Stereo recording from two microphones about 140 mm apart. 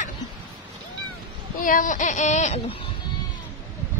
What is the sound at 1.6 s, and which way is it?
Speech, 70° left (ahead or behind).